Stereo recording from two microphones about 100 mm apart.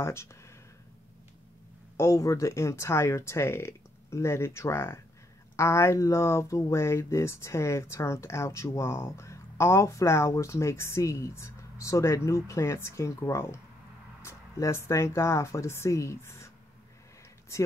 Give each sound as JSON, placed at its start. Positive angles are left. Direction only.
{"t": 0.0, "sound": "speech", "side_deg": 25}
{"t": 2.0, "sound": "speech", "side_deg": 30}